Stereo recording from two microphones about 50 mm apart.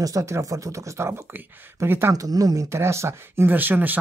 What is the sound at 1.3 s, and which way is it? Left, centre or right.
Speech, right.